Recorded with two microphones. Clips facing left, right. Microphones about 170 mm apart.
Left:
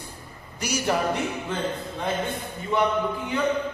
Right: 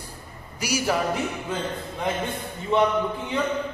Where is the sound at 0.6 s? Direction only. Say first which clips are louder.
Right 1 dB; 10° right (ahead or behind).